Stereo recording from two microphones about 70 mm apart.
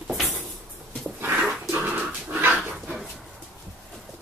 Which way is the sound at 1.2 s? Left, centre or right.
Right.